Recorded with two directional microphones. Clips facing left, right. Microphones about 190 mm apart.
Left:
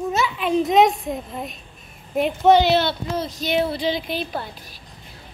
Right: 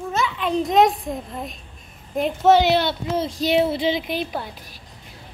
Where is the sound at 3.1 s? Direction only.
30° right (ahead or behind).